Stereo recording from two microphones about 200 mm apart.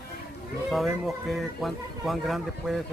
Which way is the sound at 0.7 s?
Centre (ahead or behind).